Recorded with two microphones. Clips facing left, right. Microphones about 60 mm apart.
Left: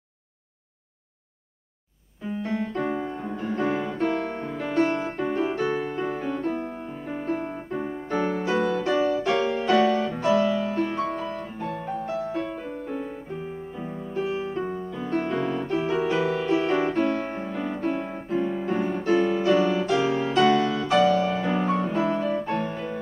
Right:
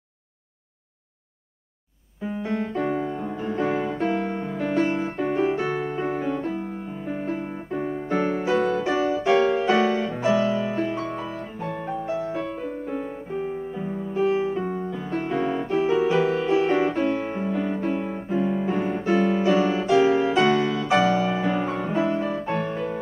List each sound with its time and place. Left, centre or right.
3.1 s music: centre